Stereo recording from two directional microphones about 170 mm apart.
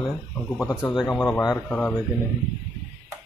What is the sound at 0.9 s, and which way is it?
Speech, centre (ahead or behind).